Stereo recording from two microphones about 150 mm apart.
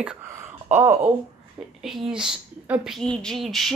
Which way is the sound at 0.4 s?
15° right (ahead or behind).